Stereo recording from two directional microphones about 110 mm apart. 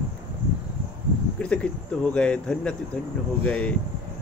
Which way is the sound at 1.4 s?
10° left (ahead or behind).